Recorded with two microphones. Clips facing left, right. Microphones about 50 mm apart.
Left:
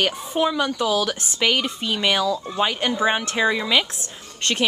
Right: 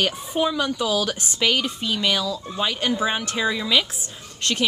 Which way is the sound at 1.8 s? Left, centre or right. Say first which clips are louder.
Left 4 dB; left.